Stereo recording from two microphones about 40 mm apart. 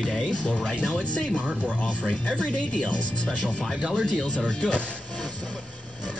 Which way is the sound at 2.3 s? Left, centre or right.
Left.